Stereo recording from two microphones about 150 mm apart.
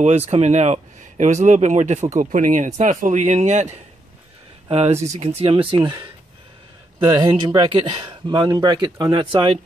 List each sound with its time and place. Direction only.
0.0 s speech: 45° right (ahead or behind); by 6.0 s 30° right (ahead or behind)
7.2 s speech: 30° right (ahead or behind)